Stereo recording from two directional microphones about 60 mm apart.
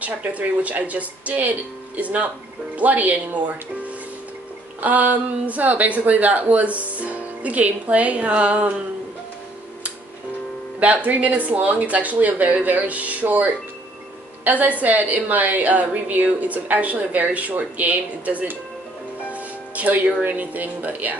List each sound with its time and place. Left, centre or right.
0.0 s a woman's voice: right
4.8 s a woman's voice: right
10.8 s a woman's voice: right
19.3 s music: right
20.2 s a woman's voice: right